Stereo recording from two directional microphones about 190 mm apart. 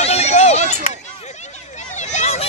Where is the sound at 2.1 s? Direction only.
35° left (ahead or behind).